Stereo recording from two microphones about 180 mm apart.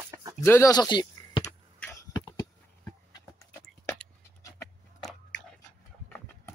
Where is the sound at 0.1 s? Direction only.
20° right (ahead or behind).